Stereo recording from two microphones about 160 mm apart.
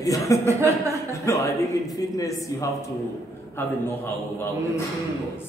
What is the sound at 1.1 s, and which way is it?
A man's voice, 20° left (ahead or behind).